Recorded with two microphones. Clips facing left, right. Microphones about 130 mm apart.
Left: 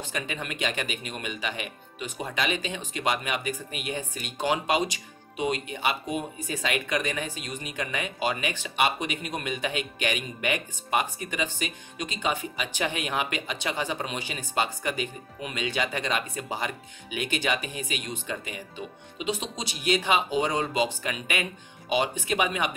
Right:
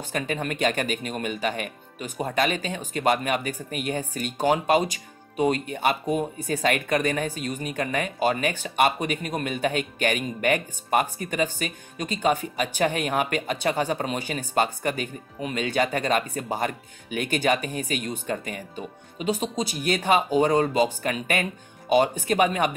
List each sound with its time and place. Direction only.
0.1 s speech: 45° right (ahead or behind)